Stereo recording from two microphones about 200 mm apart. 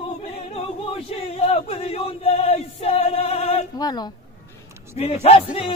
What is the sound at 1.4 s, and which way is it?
Male singing, 30° left (ahead or behind).